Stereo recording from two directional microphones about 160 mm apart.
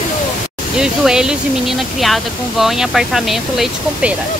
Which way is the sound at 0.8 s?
5° right (ahead or behind).